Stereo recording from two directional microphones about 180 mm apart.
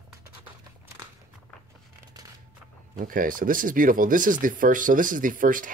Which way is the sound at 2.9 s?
50° right (ahead or behind).